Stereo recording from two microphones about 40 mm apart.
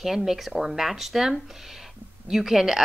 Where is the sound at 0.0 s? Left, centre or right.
Centre.